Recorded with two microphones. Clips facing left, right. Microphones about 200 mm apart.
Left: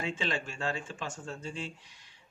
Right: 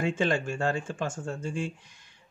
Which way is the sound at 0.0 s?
50° right (ahead or behind).